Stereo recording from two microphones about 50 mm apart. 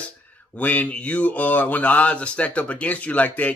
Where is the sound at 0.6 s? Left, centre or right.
Left.